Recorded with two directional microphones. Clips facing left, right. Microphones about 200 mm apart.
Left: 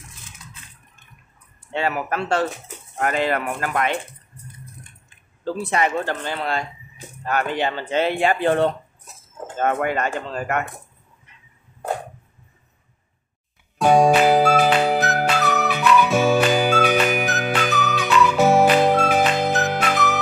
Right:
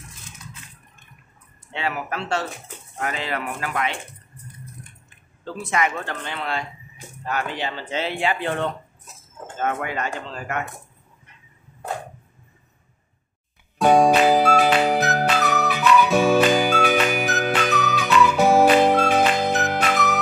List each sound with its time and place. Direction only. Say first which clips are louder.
1.7 s speech: left 4 dB; 45° left (ahead or behind)
5.4 s speech: left 3 dB; 35° left (ahead or behind)
7.2 s speech: left 5 dB; 55° left (ahead or behind); by 8.7 s 35° left (ahead or behind)
9.8 s speech: left 5 dB; 50° left (ahead or behind)
13.7 s music: left 1 dB; centre (ahead or behind)